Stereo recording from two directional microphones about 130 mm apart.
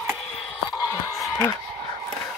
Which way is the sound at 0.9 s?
25° left (ahead or behind).